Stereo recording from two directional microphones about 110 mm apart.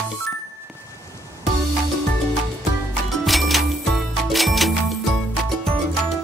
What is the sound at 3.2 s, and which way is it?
Music, centre (ahead or behind).